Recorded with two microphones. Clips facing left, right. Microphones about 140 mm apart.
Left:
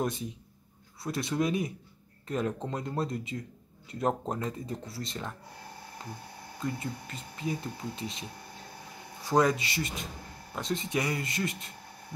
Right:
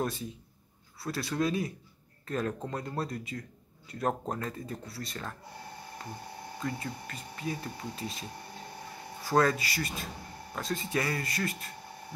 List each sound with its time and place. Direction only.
0.0 s speech: 20° left (ahead or behind)
6.6 s speech: 20° left (ahead or behind)
9.3 s speech: 15° left (ahead or behind)